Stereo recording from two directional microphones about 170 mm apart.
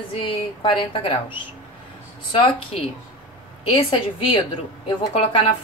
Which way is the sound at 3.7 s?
35° left (ahead or behind).